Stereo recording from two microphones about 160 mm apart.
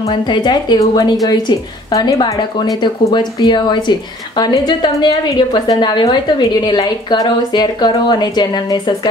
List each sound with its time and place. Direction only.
0.0 s a woman's voice: 30° left (ahead or behind)